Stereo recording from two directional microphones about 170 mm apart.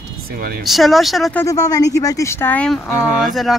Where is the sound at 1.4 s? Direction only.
20° left (ahead or behind).